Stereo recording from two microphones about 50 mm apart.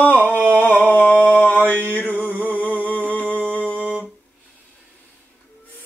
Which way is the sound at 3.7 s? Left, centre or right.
Right.